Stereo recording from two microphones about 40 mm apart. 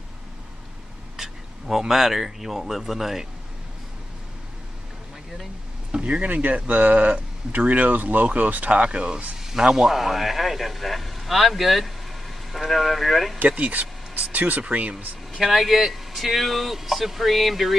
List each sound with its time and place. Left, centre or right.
1.1 s speech: centre
5.9 s speech: right
9.4 s a man's voice: centre
13.5 s a sound: right
14.3 s speech: right
15.3 s a man's voice: centre